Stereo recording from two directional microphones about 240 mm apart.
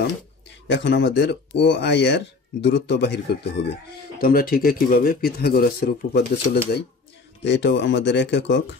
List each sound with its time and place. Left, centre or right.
0.0 s speech: left